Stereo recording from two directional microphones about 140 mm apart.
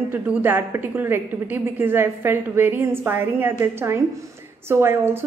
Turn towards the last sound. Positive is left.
turn(degrees=-15)  # may be behind; listen again after turning